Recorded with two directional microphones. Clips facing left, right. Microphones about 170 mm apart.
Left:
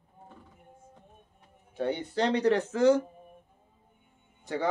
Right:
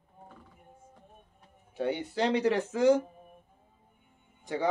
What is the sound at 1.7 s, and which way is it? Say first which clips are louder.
Speech: left 1 dB; 10° right (ahead or behind).